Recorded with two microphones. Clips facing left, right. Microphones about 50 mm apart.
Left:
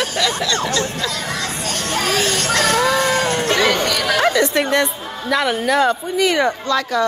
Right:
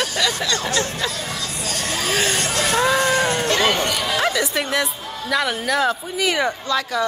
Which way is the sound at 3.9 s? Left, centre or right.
Left.